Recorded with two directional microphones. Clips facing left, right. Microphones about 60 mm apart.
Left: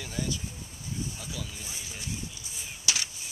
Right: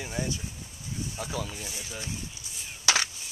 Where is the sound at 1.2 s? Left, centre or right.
Right.